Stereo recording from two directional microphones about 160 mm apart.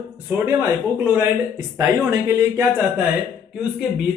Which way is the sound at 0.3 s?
10° right (ahead or behind).